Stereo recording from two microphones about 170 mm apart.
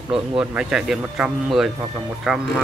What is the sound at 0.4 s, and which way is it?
Speech, 5° right (ahead or behind).